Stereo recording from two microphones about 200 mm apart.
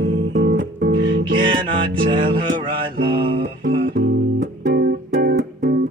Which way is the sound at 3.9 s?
50° right (ahead or behind).